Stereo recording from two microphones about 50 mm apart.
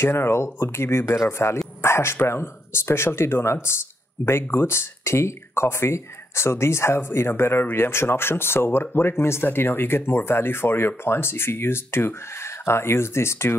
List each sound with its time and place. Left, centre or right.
0.0 s speech: left
1.8 s a sound: left
2.2 s speech: left